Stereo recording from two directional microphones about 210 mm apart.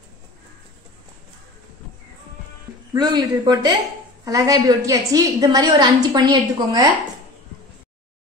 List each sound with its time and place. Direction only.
2.9 s a woman's voice: 20° right (ahead or behind)